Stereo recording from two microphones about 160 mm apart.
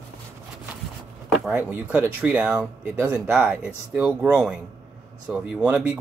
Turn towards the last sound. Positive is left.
turn(degrees=-5)  # may be behind; listen again after turning